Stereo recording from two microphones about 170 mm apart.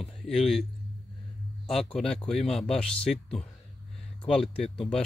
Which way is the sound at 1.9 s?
5° left (ahead or behind).